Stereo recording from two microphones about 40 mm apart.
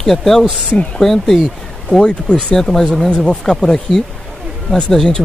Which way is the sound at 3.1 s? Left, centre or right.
Left.